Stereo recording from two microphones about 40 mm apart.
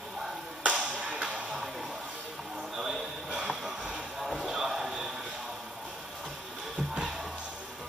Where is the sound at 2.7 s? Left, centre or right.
Centre.